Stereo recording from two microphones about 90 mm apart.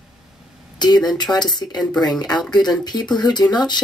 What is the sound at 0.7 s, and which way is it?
Speech, 50° left (ahead or behind).